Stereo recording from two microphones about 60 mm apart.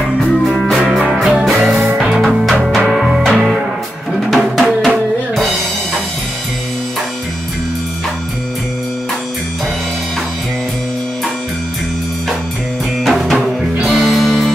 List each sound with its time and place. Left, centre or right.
0.3 s music: centre
4.1 s drum: centre
13.0 s music: centre